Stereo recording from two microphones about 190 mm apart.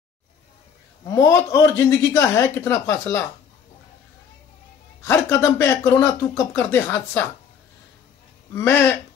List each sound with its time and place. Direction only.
1.0 s speech: 15° left (ahead or behind)
5.0 s speech: 15° left (ahead or behind)
8.5 s speech: 15° left (ahead or behind)